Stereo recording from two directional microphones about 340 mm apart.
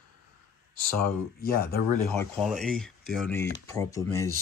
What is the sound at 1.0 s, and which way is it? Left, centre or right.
Speech, left.